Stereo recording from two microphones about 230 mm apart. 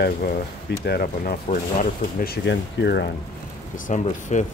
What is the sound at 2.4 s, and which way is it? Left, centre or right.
Speech, left.